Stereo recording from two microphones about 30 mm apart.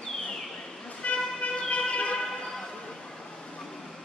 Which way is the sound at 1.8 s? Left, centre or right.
Left.